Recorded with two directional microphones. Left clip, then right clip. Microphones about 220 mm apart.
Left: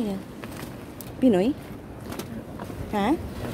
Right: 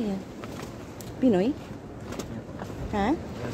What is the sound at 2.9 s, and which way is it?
Speech, 10° left (ahead or behind).